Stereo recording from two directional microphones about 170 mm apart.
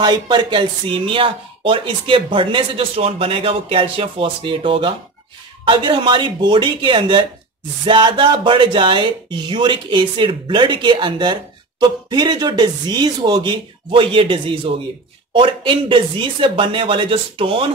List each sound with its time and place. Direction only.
0.0 s speech: 25° right (ahead or behind)